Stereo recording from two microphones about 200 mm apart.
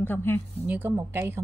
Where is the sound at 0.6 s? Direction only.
10° right (ahead or behind).